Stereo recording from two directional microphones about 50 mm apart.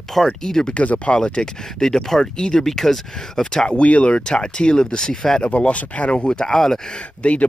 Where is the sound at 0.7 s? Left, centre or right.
Left.